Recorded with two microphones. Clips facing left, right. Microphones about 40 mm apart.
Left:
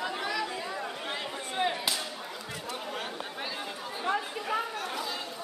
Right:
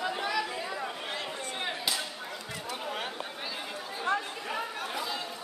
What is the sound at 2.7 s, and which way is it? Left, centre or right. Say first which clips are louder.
Chatter: right 1 dB; centre.